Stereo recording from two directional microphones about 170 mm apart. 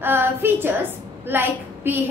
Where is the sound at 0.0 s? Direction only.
10° right (ahead or behind).